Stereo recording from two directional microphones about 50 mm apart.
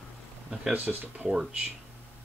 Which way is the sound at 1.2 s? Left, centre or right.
Centre.